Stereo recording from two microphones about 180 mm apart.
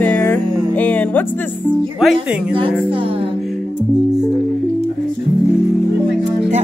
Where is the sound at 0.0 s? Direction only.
10° left (ahead or behind).